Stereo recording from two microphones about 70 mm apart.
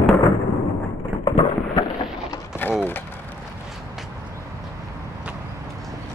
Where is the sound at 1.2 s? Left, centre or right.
Left.